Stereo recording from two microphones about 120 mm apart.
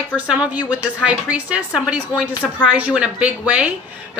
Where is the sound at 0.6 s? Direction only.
35° left (ahead or behind).